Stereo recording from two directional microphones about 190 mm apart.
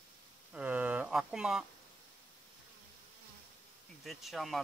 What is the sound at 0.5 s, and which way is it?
Speech, 10° right (ahead or behind).